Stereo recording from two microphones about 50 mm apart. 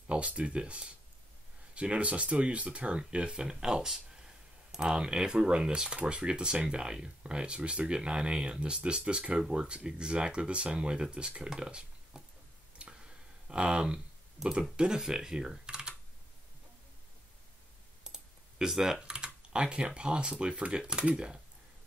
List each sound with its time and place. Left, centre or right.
0.0 s speech: right
12.8 s a sound: right
13.5 s speech: centre
18.0 s speech: centre